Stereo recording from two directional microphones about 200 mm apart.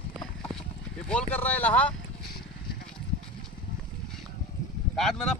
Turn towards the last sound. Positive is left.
turn(degrees=0)  # may be behind; listen again after turning